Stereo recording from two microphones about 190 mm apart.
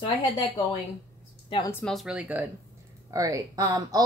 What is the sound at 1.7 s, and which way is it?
Speech, 5° left (ahead or behind).